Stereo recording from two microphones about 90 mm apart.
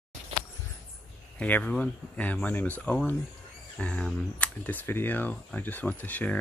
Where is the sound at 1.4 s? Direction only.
15° left (ahead or behind).